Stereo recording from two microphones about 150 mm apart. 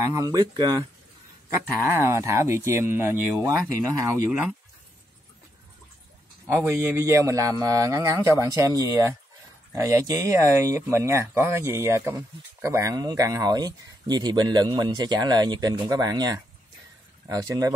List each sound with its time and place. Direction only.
0.1 s speech: 25° right (ahead or behind)
4.3 s speech: 10° right (ahead or behind)
6.4 s speech: 15° right (ahead or behind)